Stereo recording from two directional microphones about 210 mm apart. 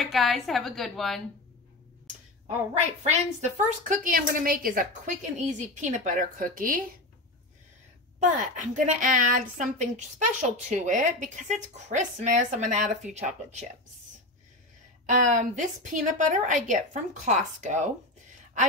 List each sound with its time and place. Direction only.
0.0 s a woman's voice: centre (ahead or behind)
2.4 s a woman's voice: 30° right (ahead or behind)
8.2 s a woman's voice: 35° right (ahead or behind)
15.0 s a woman's voice: 35° right (ahead or behind)